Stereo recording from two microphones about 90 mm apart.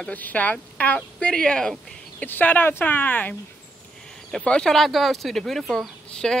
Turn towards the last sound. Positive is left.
turn(degrees=5)  # may be behind; listen again after turning